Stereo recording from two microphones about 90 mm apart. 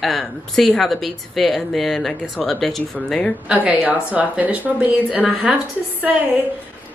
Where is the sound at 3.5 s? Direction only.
20° right (ahead or behind).